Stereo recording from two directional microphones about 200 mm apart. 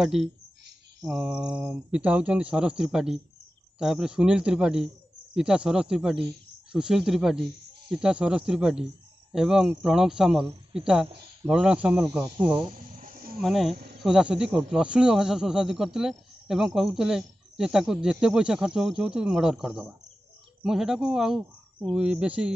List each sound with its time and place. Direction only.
0.0 s speech: centre (ahead or behind)
12.7 s snake: 45° right (ahead or behind)
13.4 s speech: centre (ahead or behind)